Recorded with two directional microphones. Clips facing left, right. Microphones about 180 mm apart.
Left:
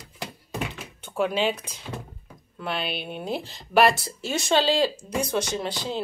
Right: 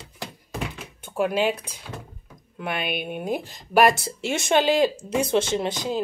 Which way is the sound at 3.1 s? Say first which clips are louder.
Right 3 dB; 10° right (ahead or behind).